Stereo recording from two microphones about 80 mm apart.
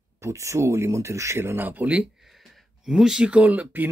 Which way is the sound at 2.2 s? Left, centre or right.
Centre.